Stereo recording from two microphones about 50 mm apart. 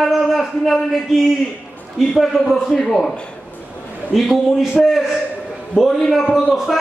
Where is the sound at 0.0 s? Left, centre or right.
Centre.